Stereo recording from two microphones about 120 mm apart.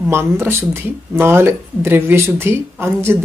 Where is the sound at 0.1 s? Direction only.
20° right (ahead or behind).